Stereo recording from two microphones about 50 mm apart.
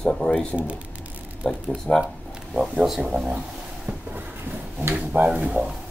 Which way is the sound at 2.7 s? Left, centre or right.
Centre.